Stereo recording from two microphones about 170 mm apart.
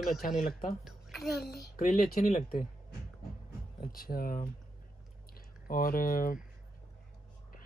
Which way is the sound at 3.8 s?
60° left (ahead or behind).